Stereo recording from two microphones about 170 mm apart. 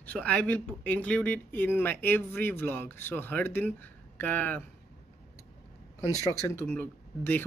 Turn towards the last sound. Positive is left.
turn(degrees=10)  # may be behind; listen again after turning